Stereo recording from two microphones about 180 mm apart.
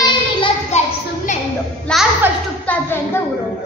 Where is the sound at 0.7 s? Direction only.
40° left (ahead or behind).